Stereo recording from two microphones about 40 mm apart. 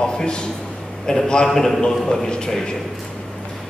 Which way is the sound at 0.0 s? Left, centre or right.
Left.